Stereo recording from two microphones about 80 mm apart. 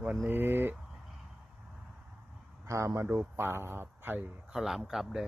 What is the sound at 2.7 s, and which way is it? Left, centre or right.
A man's voice, right.